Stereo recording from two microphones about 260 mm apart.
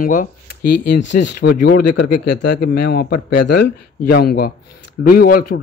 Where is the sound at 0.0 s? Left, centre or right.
Left.